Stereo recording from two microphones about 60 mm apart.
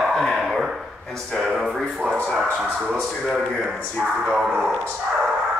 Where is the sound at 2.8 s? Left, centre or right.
Centre.